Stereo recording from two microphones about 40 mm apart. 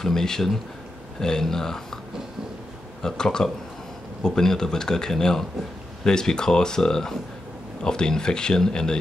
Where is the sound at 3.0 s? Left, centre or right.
Centre.